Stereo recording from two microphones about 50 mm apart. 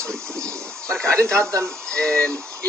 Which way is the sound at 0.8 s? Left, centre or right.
Centre.